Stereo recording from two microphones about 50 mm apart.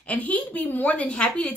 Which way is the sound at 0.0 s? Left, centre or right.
Left.